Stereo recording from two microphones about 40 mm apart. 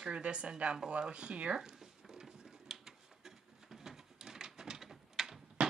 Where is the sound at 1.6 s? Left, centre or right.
Centre.